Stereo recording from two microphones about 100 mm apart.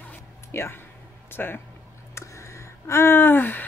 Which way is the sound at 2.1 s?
30° left (ahead or behind).